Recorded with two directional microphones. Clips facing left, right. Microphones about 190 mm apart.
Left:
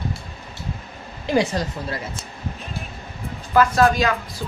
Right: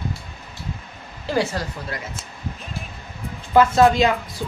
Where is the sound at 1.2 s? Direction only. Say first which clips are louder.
Left 2 dB; 15° left (ahead or behind).